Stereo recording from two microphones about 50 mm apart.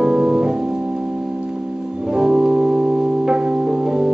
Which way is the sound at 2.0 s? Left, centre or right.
Centre.